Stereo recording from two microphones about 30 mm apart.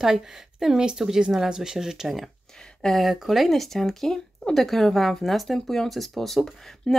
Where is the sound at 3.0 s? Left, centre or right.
Centre.